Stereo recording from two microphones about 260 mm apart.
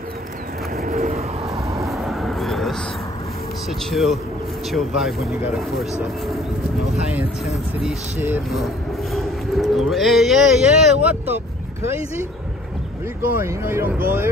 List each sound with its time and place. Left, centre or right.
0.7 s vehicle: right
1.9 s vehicle: centre
3.9 s speech: centre
13.4 s speech: centre